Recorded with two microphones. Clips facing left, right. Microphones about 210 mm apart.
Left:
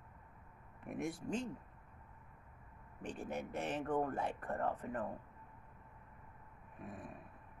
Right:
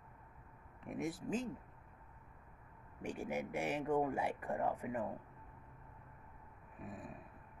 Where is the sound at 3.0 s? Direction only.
10° right (ahead or behind).